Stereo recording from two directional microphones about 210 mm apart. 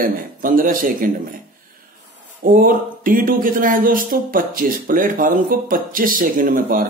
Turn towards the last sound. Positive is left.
turn(degrees=-40)  # may be behind; listen again after turning